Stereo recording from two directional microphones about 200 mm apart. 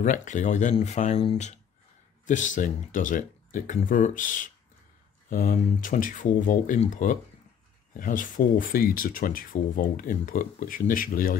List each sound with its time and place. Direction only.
0.0 s speech: 40° left (ahead or behind)